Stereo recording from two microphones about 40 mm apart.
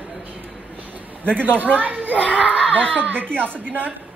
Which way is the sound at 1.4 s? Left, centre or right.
Right.